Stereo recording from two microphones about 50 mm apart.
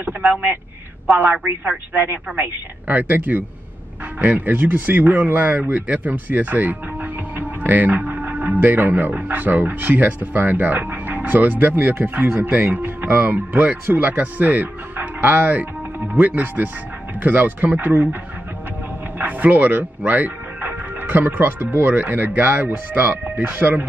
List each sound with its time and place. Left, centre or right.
0.0 s speech: right
2.9 s speech: right
19.1 s speech: right